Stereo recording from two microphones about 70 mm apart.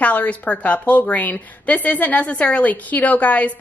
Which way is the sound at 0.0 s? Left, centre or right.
Left.